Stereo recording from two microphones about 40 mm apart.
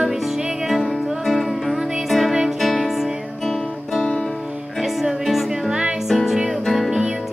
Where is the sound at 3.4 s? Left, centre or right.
Centre.